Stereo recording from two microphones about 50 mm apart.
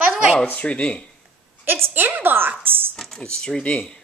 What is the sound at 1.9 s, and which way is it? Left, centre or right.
Speech, right.